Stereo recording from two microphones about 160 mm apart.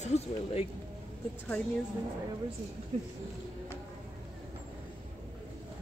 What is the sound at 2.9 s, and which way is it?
Speech, 40° right (ahead or behind).